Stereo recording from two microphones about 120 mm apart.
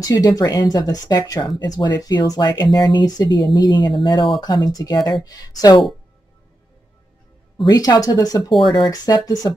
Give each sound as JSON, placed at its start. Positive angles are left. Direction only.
{"t": 0.0, "sound": "speech", "side_deg": 30}
{"t": 7.6, "sound": "speech", "side_deg": 35}
{"t": 8.5, "sound": "speech", "side_deg": 0}
{"t": 8.8, "sound": "speech", "side_deg": 30}